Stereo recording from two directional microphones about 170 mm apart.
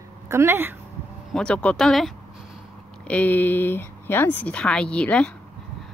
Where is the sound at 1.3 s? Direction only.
5° left (ahead or behind).